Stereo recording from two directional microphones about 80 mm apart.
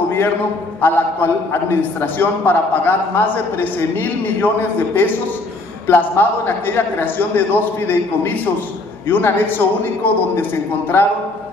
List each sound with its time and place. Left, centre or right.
0.7 s a man's voice: left